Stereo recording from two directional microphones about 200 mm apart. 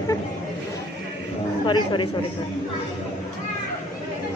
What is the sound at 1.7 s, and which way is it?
Speech, 20° left (ahead or behind).